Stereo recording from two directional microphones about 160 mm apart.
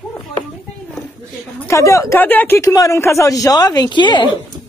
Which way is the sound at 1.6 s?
20° left (ahead or behind).